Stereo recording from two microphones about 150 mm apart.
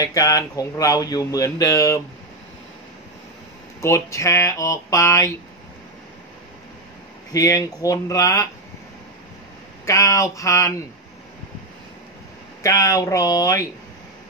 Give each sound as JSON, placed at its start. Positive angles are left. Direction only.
{"t": 0.0, "sound": "speech", "side_deg": 25}
{"t": 3.8, "sound": "speech", "side_deg": 20}
{"t": 7.3, "sound": "speech", "side_deg": 20}
{"t": 9.8, "sound": "speech", "side_deg": 20}
{"t": 12.6, "sound": "speech", "side_deg": 25}